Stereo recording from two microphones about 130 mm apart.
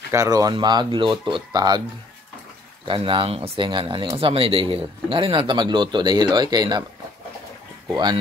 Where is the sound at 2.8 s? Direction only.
40° right (ahead or behind).